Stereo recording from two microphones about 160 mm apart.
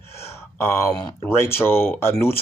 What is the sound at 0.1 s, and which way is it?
Speech, 15° left (ahead or behind).